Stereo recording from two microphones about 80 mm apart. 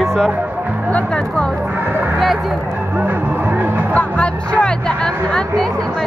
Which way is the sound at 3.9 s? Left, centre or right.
Centre.